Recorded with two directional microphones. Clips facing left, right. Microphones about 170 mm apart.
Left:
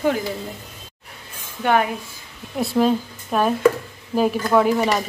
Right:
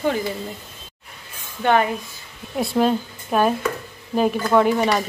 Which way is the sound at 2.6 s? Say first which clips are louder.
Left 1 dB; centre (ahead or behind).